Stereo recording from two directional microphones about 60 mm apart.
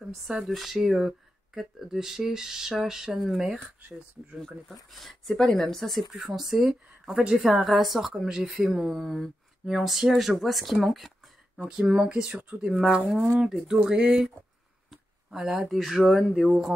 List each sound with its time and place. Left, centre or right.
0.5 s speech: centre
4.9 s speech: centre
9.0 s speech: centre
11.7 s speech: centre
15.3 s speech: centre